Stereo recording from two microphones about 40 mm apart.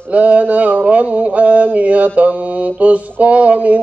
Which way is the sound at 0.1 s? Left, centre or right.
Right.